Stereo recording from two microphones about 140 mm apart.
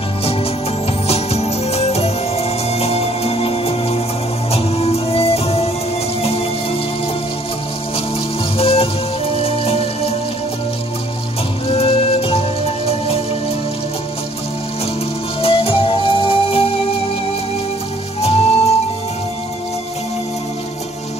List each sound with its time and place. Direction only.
0.2 s music: 45° left (ahead or behind)
6.2 s raindrop: 45° left (ahead or behind)
8.5 s music: 45° left (ahead or behind)
11.6 s music: 45° left (ahead or behind)
15.4 s music: 40° left (ahead or behind)
18.2 s music: 45° left (ahead or behind)